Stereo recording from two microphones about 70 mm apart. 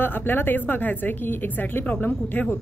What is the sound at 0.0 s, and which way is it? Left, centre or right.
A woman's voice, left.